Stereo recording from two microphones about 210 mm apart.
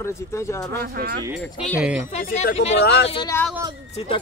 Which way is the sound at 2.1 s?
40° left (ahead or behind).